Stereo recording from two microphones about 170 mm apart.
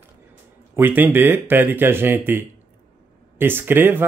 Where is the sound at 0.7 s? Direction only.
10° right (ahead or behind).